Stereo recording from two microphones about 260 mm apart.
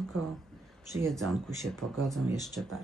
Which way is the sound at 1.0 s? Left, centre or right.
Centre.